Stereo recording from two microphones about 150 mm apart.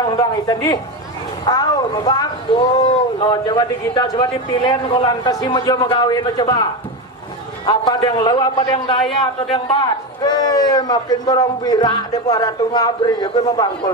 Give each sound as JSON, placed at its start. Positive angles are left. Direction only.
{"t": 0.0, "sound": "a man's voice", "side_deg": 25}
{"t": 10.2, "sound": "a man's voice", "side_deg": 25}